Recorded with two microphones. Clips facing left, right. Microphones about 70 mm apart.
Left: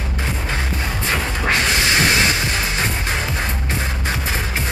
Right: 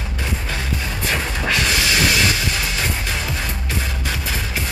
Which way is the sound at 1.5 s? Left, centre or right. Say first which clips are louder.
Left 2 dB; left.